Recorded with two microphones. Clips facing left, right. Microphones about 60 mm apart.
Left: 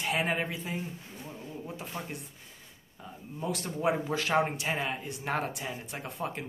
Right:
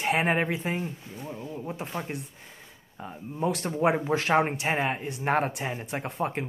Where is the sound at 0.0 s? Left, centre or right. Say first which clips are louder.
Right 5 dB; right.